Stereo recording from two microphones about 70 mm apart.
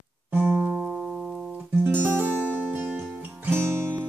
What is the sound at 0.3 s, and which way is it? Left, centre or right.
Music, right.